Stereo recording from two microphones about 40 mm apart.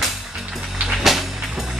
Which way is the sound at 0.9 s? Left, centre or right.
Centre.